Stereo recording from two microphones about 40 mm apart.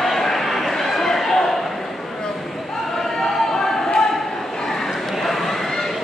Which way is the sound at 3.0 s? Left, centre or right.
Centre.